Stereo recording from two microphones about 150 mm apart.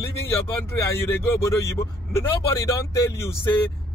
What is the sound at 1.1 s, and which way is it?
Speech, 15° left (ahead or behind).